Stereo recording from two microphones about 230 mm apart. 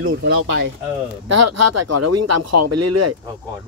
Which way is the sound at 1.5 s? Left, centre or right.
Right.